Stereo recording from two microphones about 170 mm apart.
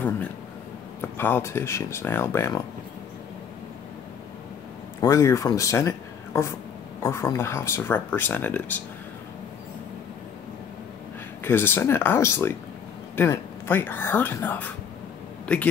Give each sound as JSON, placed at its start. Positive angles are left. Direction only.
{"t": 1.1, "sound": "speech", "side_deg": 15}
{"t": 5.0, "sound": "speech", "side_deg": 20}
{"t": 11.4, "sound": "speech", "side_deg": 15}